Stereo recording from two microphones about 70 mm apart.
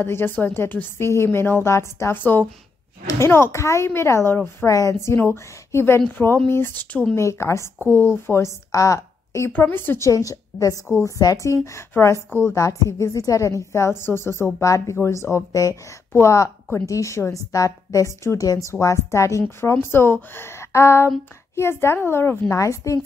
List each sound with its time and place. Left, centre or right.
0.0 s a woman's voice: left
2.1 s a woman's voice: left
4.6 s a woman's voice: left
5.1 s a woman's voice: left
7.2 s a woman's voice: left
7.8 s a woman's voice: left
8.7 s a woman's voice: left
9.5 s speech: left
9.9 s a woman's voice: left
14.6 s a woman's voice: left
15.0 s a woman's voice: left
16.1 s a woman's voice: left
19.6 s a woman's voice: left
22.6 s a woman's voice: left